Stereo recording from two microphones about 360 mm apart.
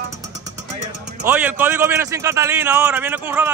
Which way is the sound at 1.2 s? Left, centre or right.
Centre.